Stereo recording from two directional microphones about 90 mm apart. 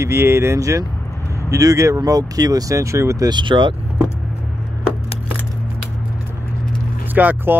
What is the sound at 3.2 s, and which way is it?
Speech, 60° right (ahead or behind).